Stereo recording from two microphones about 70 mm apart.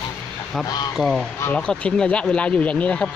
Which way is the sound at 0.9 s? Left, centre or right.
Centre.